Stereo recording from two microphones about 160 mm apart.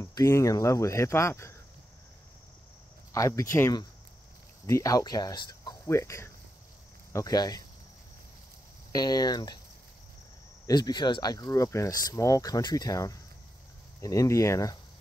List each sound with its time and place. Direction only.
0.0 s speech: 20° left (ahead or behind)
3.1 s speech: 20° left (ahead or behind)
8.9 s speech: 25° left (ahead or behind)
10.7 s speech: 25° left (ahead or behind)